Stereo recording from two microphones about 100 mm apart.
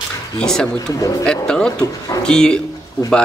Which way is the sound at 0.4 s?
5° left (ahead or behind).